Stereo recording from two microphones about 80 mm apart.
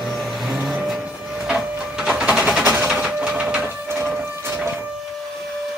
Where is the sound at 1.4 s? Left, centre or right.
Centre.